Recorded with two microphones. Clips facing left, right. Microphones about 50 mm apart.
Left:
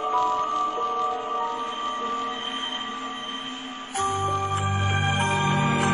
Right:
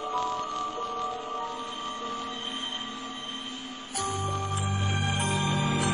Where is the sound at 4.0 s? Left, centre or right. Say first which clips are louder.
Left 6 dB; left.